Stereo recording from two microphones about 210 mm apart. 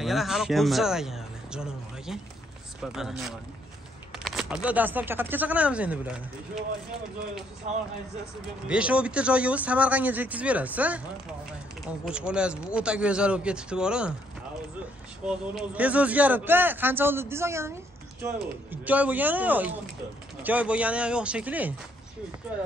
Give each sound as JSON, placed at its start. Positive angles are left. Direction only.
{"t": 0.0, "sound": "speech", "side_deg": 0}
{"t": 7.7, "sound": "speech", "side_deg": -35}
{"t": 8.6, "sound": "speech", "side_deg": -5}
{"t": 15.2, "sound": "speech", "side_deg": -5}